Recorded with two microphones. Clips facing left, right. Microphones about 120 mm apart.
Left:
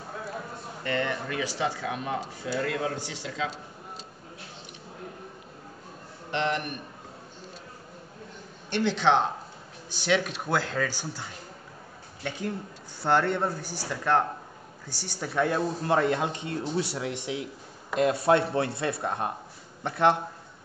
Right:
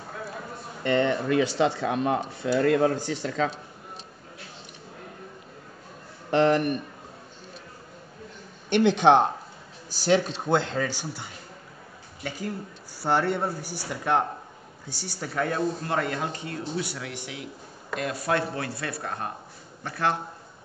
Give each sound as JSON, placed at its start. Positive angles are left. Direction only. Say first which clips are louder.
{"t": 0.8, "sound": "a man's voice", "louder": "right 7 dB", "side_deg": -25}
{"t": 6.3, "sound": "speech", "louder": "right 8 dB", "side_deg": -40}
{"t": 8.6, "sound": "speech", "louder": "right 5 dB", "side_deg": -60}
{"t": 9.8, "sound": "a man's voice", "louder": "right 4 dB", "side_deg": -40}
{"t": 12.2, "sound": "speech", "louder": "even", "side_deg": -5}
{"t": 15.1, "sound": "speech", "louder": "left 2 dB", "side_deg": 0}
{"t": 15.9, "sound": "speech", "louder": "left 3 dB", "side_deg": 20}